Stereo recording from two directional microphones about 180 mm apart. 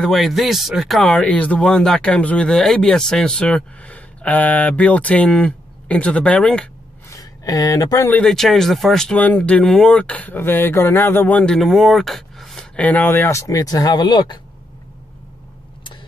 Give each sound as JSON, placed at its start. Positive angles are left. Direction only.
{"t": 0.0, "sound": "speech", "side_deg": 0}
{"t": 7.1, "sound": "speech", "side_deg": 20}
{"t": 8.1, "sound": "speech", "side_deg": 5}